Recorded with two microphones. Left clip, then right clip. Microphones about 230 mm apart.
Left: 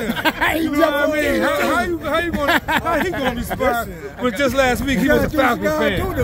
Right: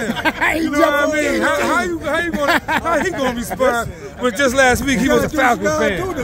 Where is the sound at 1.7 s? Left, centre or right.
Centre.